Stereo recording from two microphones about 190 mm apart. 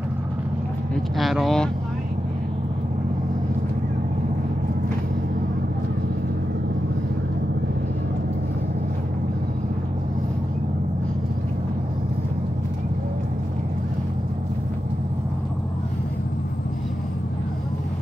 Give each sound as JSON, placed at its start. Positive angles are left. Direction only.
{"t": 1.1, "sound": "speech", "side_deg": 0}